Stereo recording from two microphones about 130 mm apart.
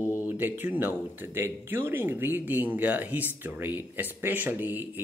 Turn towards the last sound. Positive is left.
turn(degrees=-15)  # may be behind; listen again after turning